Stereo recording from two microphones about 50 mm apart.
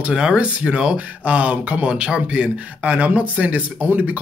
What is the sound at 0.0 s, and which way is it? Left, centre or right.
Speech, centre.